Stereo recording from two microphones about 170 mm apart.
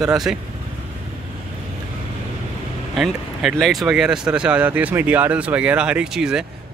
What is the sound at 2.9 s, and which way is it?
Speech, centre (ahead or behind).